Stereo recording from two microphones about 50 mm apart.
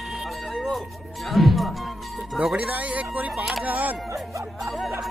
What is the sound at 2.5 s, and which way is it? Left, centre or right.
Speech, right.